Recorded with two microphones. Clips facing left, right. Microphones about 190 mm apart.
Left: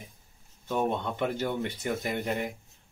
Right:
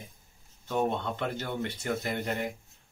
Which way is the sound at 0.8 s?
15° left (ahead or behind).